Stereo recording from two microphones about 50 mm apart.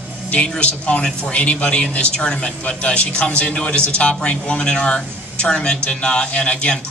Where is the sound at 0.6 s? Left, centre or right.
Left.